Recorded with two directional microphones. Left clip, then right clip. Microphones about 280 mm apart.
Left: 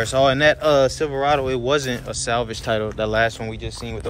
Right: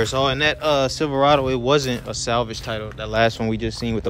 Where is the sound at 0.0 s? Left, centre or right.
Centre.